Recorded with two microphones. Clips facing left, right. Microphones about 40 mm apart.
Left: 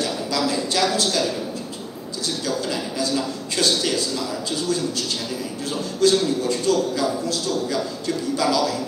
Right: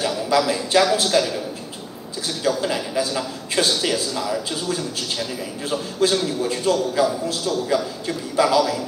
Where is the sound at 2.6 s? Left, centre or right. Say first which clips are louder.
Right 3 dB; right.